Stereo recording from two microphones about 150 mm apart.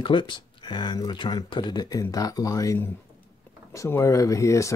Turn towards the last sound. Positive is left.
turn(degrees=20)  # may be behind; listen again after turning